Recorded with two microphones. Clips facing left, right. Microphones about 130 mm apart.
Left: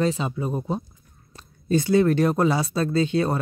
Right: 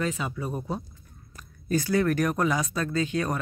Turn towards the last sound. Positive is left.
turn(degrees=30)  # may be behind; listen again after turning